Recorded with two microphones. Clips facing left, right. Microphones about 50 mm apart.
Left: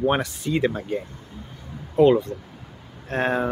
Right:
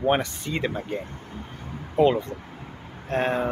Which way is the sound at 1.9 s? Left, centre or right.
Centre.